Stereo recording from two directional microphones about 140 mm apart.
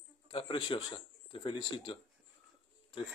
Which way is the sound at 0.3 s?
40° left (ahead or behind).